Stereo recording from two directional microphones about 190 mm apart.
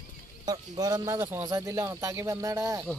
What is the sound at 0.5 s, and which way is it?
Speech, 20° right (ahead or behind).